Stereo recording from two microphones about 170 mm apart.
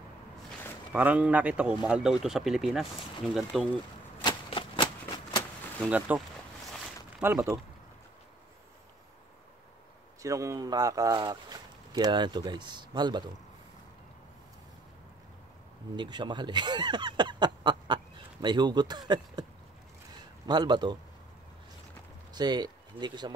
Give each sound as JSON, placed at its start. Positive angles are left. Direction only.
{"t": 0.9, "sound": "a man's voice", "side_deg": -10}
{"t": 4.2, "sound": "a sound", "side_deg": 30}
{"t": 5.9, "sound": "a man's voice", "side_deg": -10}
{"t": 10.2, "sound": "speech", "side_deg": -20}
{"t": 16.0, "sound": "speech", "side_deg": -25}
{"t": 20.4, "sound": "speech", "side_deg": -25}
{"t": 22.3, "sound": "speech", "side_deg": -25}